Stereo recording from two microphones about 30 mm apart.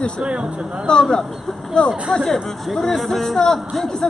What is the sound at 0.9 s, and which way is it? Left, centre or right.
Speech, left.